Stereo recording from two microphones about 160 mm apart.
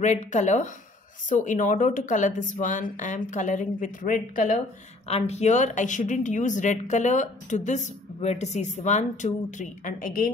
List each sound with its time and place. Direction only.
0.0 s a woman's voice: 50° left (ahead or behind)
5.0 s a woman's voice: 40° left (ahead or behind); by 10.3 s 60° left (ahead or behind)